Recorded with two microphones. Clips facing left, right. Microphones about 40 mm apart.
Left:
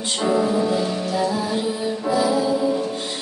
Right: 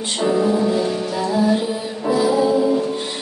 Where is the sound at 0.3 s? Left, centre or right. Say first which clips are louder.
Right 2 dB; centre.